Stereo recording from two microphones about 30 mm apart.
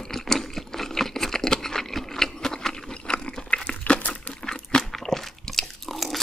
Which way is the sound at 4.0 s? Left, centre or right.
Left.